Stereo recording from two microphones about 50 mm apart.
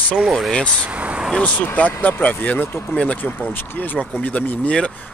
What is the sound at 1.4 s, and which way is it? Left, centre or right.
Speech, left.